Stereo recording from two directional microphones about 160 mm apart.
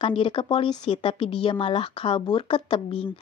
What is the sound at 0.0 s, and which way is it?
A woman's voice, 35° left (ahead or behind).